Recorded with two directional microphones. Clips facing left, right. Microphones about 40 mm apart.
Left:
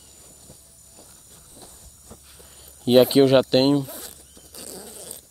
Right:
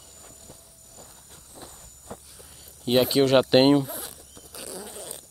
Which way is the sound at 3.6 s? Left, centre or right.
Centre.